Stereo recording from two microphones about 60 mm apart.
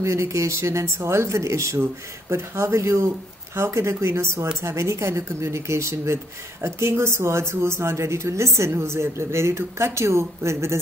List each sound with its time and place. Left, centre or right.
0.0 s a woman's voice: right